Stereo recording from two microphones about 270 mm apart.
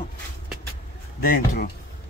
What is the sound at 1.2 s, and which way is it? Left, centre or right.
Speech, left.